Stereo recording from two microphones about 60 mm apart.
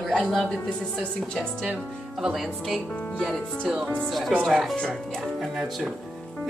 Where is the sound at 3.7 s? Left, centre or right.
Centre.